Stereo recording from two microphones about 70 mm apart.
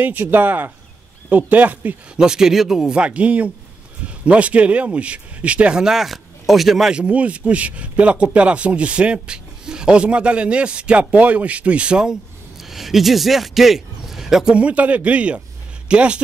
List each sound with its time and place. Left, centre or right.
0.0 s speech: right
2.1 s speech: centre
7.0 s a man's voice: centre